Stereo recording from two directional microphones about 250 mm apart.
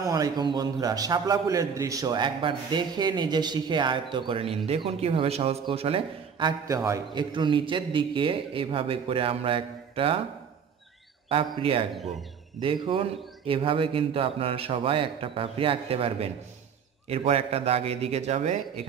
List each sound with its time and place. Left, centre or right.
0.0 s a man's voice: centre
11.2 s a man's voice: right